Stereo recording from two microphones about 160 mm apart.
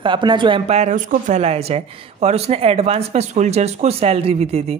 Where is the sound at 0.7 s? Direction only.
45° right (ahead or behind).